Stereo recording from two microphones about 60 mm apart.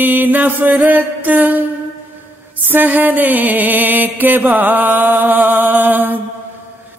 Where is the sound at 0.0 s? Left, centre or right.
Right.